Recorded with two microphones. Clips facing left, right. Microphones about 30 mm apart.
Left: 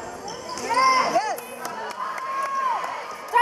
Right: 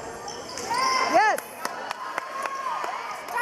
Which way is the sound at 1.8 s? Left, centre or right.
Right.